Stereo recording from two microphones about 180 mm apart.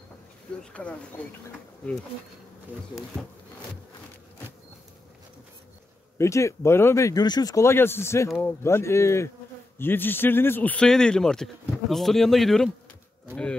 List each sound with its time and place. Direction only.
0.6 s speech: 5° left (ahead or behind)
6.1 s speech: 15° left (ahead or behind)